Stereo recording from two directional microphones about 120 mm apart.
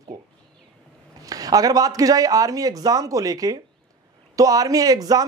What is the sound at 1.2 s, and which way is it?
A man's voice, 30° right (ahead or behind).